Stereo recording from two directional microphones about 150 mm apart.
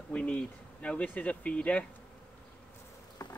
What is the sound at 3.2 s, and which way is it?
Insect, 25° left (ahead or behind).